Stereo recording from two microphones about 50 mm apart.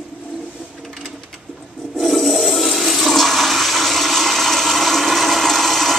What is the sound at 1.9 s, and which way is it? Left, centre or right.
Toilet flush, centre.